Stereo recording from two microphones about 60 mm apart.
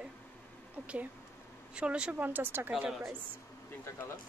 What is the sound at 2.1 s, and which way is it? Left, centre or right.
Speech, right.